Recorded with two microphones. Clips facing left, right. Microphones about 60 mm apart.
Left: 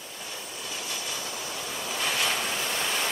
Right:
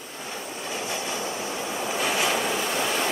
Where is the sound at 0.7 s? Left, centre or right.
Right.